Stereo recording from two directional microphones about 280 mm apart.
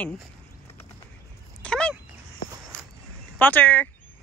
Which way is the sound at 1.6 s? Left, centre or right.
Centre.